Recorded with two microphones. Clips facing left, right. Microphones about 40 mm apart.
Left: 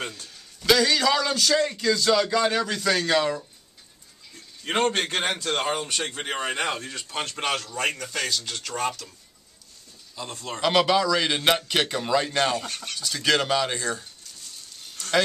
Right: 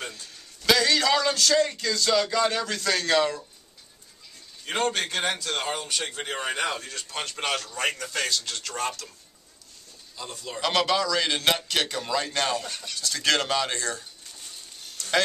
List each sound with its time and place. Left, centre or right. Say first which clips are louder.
0.1 s a man's voice: left 1 dB; centre
4.6 s a man's voice: left 3 dB; left; by 9.1 s centre
10.2 s a man's voice: left 2 dB; left
10.6 s a man's voice: left 3 dB; centre